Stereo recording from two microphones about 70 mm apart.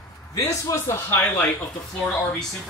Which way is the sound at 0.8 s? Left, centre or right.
Left.